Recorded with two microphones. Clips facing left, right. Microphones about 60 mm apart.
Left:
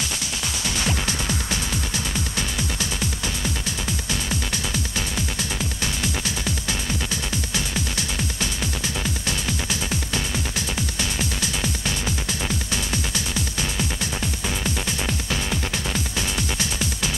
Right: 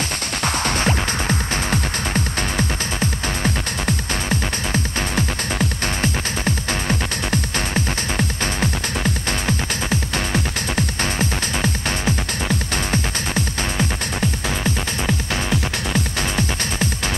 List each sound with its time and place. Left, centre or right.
0.4 s music: right
6.4 s music: right
12.7 s music: right